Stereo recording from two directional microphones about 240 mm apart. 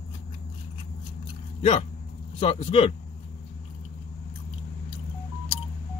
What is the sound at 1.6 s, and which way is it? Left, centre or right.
Speech, left.